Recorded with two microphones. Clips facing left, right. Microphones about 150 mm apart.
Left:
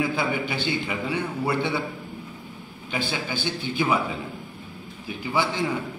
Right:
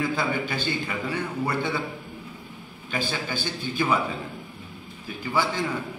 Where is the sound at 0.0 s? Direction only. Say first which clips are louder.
Left 1 dB; 10° left (ahead or behind).